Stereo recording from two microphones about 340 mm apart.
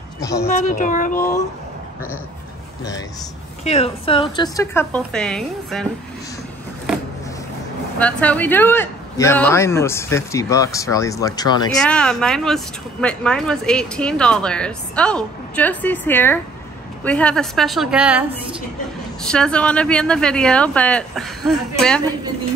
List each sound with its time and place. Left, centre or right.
0.2 s speech: centre
0.5 s speech: left
3.6 s speech: centre
8.0 s speech: centre
19.3 s speech: centre